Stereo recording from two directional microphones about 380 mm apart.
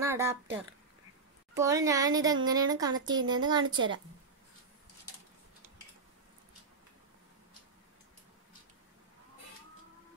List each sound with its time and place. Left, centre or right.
0.0 s speech: centre
3.6 s a woman's voice: right